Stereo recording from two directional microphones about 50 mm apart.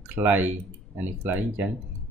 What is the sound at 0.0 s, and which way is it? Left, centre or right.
Speech, right.